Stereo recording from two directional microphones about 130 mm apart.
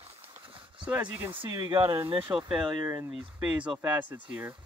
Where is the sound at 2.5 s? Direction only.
10° right (ahead or behind).